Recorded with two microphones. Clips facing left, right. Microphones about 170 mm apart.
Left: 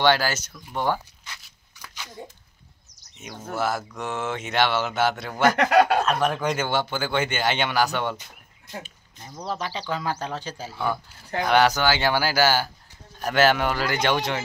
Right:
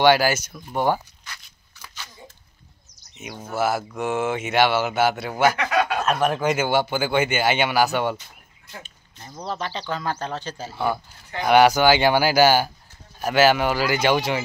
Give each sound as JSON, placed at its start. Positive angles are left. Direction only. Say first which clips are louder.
{"t": 0.0, "sound": "speech", "louder": "right 4 dB", "side_deg": -10}
{"t": 1.8, "sound": "a sound", "louder": "even", "side_deg": 15}
{"t": 3.2, "sound": "speech", "louder": "right 3 dB", "side_deg": -5}
{"t": 5.6, "sound": "speech", "louder": "left 4 dB", "side_deg": 45}
{"t": 6.0, "sound": "speech", "louder": "right 2 dB", "side_deg": -5}
{"t": 8.7, "sound": "speech", "louder": "left 4 dB", "side_deg": 10}
{"t": 11.4, "sound": "speech", "louder": "right 5 dB", "side_deg": -10}
{"t": 13.2, "sound": "speech", "louder": "right 2 dB", "side_deg": -5}